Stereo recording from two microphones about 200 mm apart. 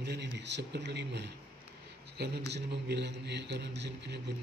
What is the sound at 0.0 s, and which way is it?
A man's voice, 55° right (ahead or behind).